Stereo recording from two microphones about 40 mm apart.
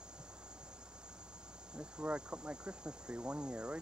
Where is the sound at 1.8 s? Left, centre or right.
Right.